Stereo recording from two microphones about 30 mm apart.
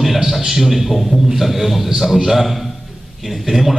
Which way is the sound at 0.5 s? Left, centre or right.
Centre.